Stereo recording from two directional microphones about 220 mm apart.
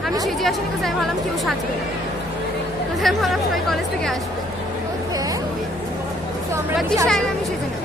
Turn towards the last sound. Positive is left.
turn(degrees=0)  # may be behind; listen again after turning